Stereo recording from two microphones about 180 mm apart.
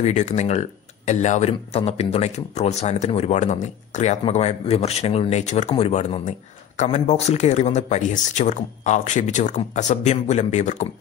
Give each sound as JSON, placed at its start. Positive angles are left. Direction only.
{"t": 0.0, "sound": "speech", "side_deg": 40}